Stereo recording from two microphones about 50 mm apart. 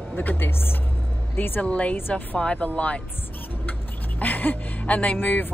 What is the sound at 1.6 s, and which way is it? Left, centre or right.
Speech, left.